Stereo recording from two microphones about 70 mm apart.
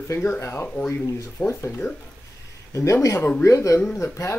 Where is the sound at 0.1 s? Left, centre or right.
Left.